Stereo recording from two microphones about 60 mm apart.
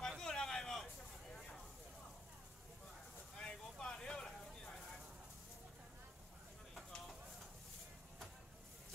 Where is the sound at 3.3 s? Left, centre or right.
Centre.